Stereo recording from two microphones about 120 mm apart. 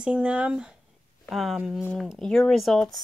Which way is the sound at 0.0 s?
10° right (ahead or behind).